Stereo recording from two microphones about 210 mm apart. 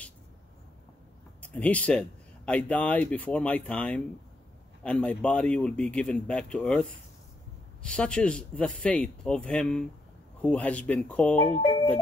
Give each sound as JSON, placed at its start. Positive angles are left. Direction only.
{"t": 1.4, "sound": "speech", "side_deg": 5}
{"t": 11.4, "sound": "speech", "side_deg": 30}